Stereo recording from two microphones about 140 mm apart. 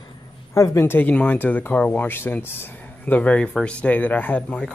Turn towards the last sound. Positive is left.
turn(degrees=10)  # may be behind; listen again after turning